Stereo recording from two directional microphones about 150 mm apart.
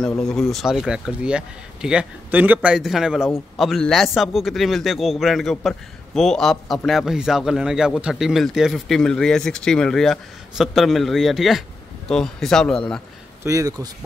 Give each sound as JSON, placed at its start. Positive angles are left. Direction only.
{"t": 0.2, "sound": "a man's voice", "side_deg": 5}
{"t": 13.4, "sound": "a man's voice", "side_deg": -20}